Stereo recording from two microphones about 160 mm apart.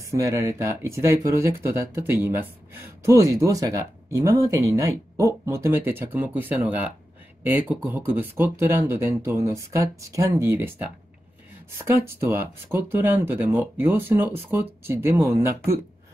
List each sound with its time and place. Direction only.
0.1 s speech: 20° right (ahead or behind)